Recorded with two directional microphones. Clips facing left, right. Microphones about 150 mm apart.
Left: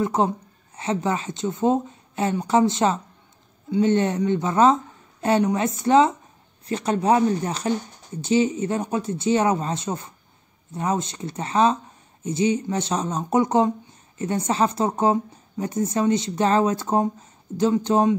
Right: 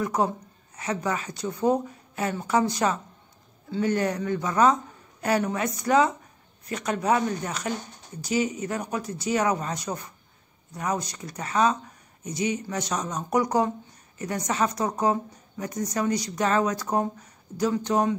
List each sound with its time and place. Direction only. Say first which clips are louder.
0.0 s speech: left 4 dB; 25° left (ahead or behind)